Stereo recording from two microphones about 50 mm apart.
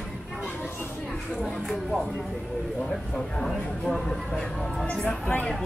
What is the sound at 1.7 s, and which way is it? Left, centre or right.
A woman's voice, centre.